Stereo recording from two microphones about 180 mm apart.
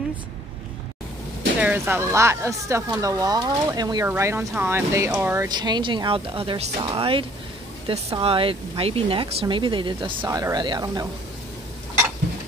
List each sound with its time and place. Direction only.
1.6 s speech: 10° right (ahead or behind)